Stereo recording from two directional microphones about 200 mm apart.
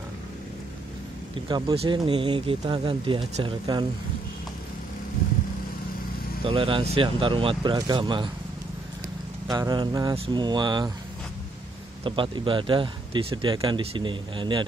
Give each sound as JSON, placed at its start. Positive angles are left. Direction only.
{"t": 1.5, "sound": "speech", "side_deg": -25}
{"t": 6.4, "sound": "speech", "side_deg": -25}
{"t": 9.5, "sound": "speech", "side_deg": -20}
{"t": 12.0, "sound": "speech", "side_deg": -25}